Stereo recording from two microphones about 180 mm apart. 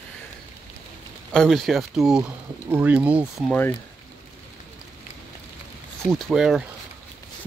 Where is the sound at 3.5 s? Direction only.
10° left (ahead or behind).